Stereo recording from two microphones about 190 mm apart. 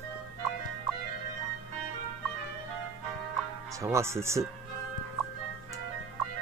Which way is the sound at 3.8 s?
15° right (ahead or behind).